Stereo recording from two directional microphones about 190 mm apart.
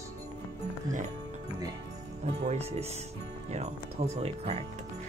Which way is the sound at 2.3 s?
35° right (ahead or behind).